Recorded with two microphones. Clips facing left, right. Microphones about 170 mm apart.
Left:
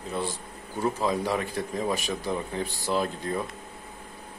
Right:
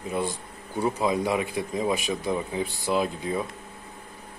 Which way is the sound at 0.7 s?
15° right (ahead or behind).